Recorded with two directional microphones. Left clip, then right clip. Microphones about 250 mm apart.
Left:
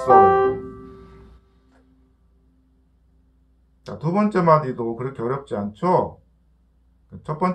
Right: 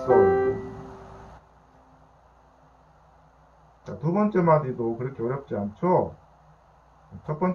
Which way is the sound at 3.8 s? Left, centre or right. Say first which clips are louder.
Left 3 dB; centre.